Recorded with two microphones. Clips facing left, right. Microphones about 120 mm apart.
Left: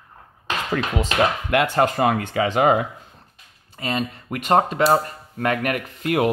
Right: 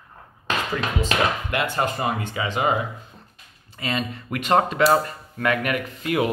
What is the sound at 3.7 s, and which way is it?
Speech, 40° left (ahead or behind).